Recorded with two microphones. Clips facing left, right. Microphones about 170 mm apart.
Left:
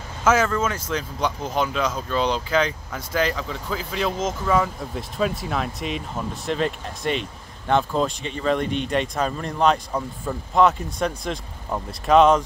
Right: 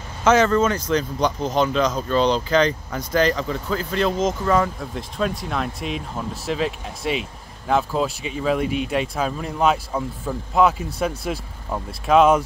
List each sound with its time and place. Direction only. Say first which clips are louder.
0.2 s speech: right 4 dB; 5° left (ahead or behind)